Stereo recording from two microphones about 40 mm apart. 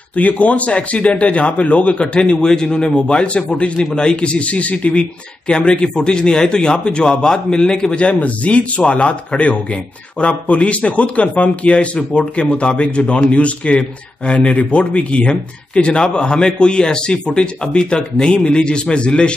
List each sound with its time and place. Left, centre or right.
0.1 s a man's voice: left; by 7.9 s centre
7.9 s a man's voice: left